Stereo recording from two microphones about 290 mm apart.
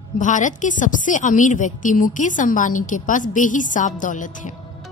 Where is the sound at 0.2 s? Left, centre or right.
Left.